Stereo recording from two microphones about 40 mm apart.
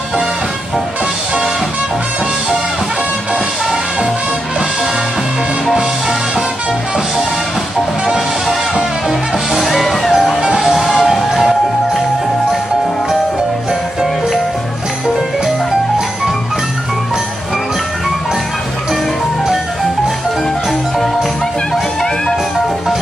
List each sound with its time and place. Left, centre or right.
5.8 s music: centre
8.0 s music: centre
9.5 s music: centre